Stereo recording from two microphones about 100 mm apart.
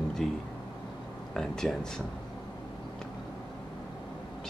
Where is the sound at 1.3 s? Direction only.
5° left (ahead or behind).